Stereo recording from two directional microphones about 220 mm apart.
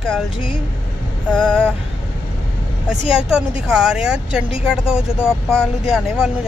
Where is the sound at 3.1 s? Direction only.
5° right (ahead or behind).